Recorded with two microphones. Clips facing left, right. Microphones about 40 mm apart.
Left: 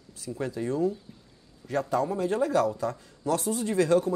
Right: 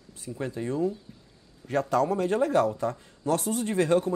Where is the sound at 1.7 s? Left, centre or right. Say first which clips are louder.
Right 2 dB; right.